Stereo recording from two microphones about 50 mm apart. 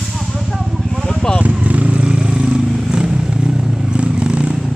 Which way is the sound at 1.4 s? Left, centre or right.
Right.